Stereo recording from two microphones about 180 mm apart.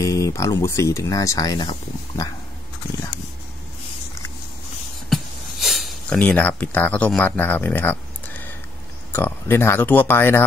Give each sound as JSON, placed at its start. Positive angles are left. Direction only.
{"t": 0.0, "sound": "speech", "side_deg": 20}
{"t": 5.1, "sound": "a sound", "side_deg": 0}
{"t": 9.1, "sound": "speech", "side_deg": 10}